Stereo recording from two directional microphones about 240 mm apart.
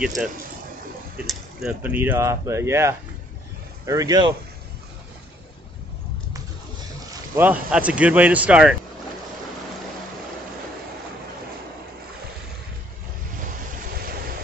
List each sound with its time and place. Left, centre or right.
0.0 s speech: centre
7.3 s speech: centre